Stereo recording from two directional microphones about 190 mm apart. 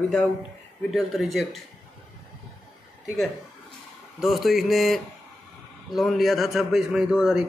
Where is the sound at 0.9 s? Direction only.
Centre (ahead or behind).